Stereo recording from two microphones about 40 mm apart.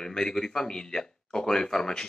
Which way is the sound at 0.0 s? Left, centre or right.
Centre.